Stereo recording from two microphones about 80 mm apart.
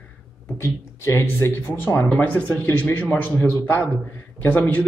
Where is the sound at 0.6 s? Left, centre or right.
Left.